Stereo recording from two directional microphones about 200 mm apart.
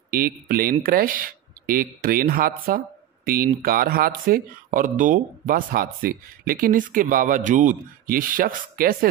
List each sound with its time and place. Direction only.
0.1 s speech: 50° right (ahead or behind)